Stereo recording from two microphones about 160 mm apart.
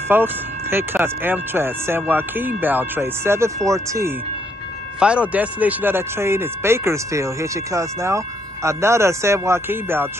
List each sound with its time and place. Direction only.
0.1 s speech: 15° right (ahead or behind)
5.0 s speech: 5° right (ahead or behind)